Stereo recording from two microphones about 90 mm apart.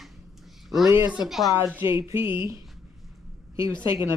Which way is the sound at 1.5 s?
30° right (ahead or behind).